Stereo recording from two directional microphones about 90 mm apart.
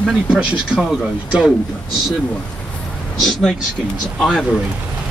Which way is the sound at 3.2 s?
5° left (ahead or behind).